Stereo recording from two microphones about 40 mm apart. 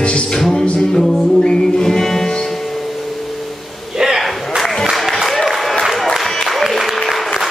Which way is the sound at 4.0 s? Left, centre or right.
Centre.